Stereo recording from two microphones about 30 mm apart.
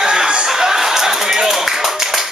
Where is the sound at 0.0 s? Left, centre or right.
Right.